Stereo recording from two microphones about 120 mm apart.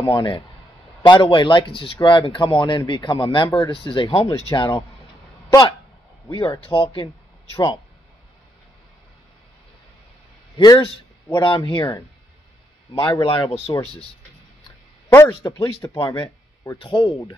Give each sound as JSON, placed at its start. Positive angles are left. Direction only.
{"t": 0.0, "sound": "speech", "side_deg": 40}
{"t": 5.5, "sound": "speech", "side_deg": 30}
{"t": 6.3, "sound": "speech", "side_deg": 40}
{"t": 11.3, "sound": "speech", "side_deg": 45}
{"t": 12.9, "sound": "speech", "side_deg": 45}
{"t": 15.4, "sound": "speech", "side_deg": 25}
{"t": 16.7, "sound": "speech", "side_deg": 50}